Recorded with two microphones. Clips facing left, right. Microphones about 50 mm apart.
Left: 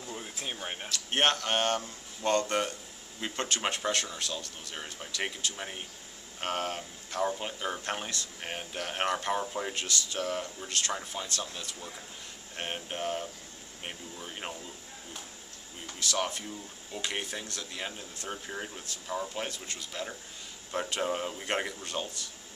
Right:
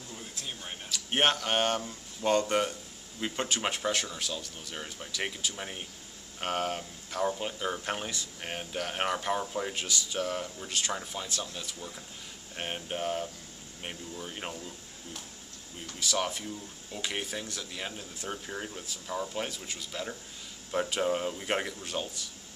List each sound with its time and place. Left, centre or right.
0.1 s a sound: left
0.8 s speech: centre
9.8 s speech: centre
12.5 s speech: centre
16.0 s speech: centre